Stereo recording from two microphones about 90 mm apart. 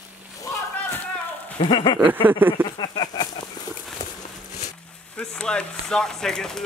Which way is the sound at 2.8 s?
55° left (ahead or behind).